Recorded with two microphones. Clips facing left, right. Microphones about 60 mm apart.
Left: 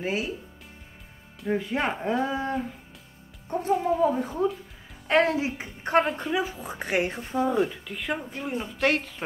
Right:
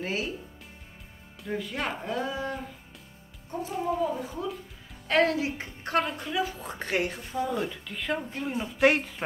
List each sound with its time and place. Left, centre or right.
0.0 s speech: centre
1.5 s speech: left
3.4 s speech: left
5.0 s speech: left
7.0 s speech: left
7.7 s speech: centre
8.7 s speech: centre